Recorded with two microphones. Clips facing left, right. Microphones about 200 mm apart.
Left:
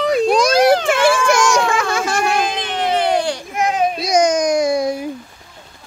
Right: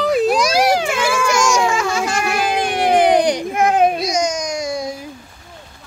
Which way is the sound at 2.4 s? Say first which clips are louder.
Right 2 dB; 10° right (ahead or behind).